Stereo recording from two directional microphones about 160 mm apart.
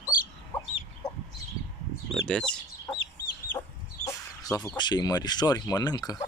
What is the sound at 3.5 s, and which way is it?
Chicken, 20° left (ahead or behind).